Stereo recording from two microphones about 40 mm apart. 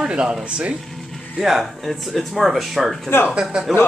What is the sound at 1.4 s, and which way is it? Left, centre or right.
Speech, centre.